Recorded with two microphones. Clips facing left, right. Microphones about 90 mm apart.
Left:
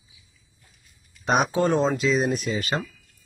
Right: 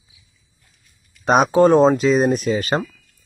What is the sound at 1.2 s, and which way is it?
Speech, 50° right (ahead or behind).